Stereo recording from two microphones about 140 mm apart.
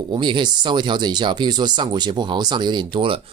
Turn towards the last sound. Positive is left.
turn(degrees=-35)  # may be behind; listen again after turning